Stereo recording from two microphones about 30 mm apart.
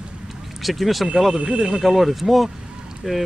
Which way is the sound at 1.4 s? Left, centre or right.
Right.